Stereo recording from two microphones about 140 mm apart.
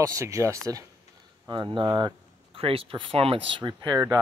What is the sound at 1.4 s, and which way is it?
Speech, 35° right (ahead or behind).